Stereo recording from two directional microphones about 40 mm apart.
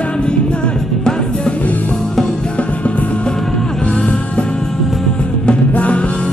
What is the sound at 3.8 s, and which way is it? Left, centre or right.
Music, left.